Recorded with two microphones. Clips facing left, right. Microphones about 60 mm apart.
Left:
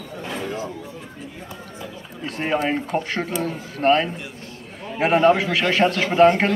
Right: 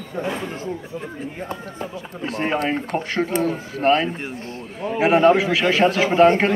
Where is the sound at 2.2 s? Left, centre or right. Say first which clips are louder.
Even; centre.